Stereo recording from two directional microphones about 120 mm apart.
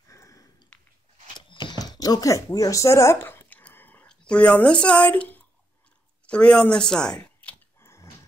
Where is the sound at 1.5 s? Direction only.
40° left (ahead or behind); by 5.4 s 10° left (ahead or behind).